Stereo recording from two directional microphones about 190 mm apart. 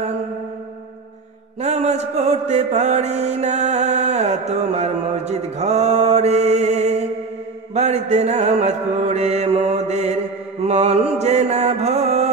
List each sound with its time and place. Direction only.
1.6 s mantra: 35° right (ahead or behind)